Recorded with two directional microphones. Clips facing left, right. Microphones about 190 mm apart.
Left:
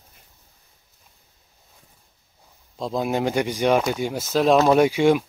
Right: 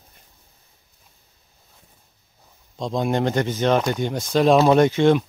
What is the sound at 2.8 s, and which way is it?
Speech, 5° left (ahead or behind).